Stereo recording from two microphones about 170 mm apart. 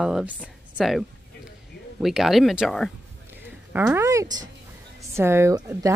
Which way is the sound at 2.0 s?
Centre (ahead or behind).